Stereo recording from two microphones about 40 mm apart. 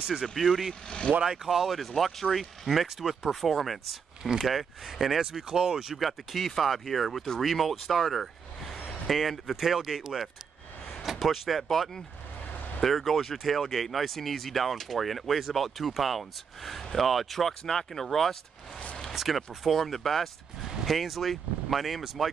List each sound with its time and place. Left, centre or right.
0.4 s speech: centre
0.8 s speech: left
1.2 s speech: centre
4.2 s speech: centre
4.5 s speech: centre
5.3 s speech: centre
5.9 s speech: centre